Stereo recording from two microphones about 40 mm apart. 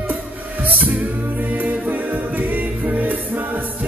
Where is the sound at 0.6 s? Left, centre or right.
Right.